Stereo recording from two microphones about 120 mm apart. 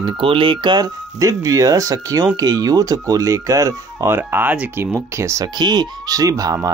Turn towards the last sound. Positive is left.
turn(degrees=-30)  # may be behind; listen again after turning